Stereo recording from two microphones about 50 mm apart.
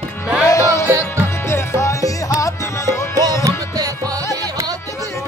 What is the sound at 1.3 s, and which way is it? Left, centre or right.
Music, left.